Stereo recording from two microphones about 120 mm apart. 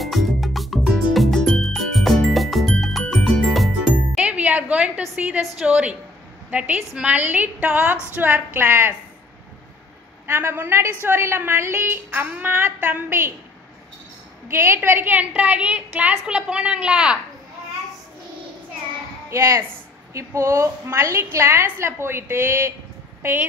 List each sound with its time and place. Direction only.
0.0 s music: centre (ahead or behind)
4.1 s music: 10° right (ahead or behind)
5.1 s a woman's voice: 10° right (ahead or behind)
10.2 s a woman's voice: 20° right (ahead or behind)
14.5 s a woman's voice: 20° right (ahead or behind)
19.3 s a woman's voice: 25° right (ahead or behind)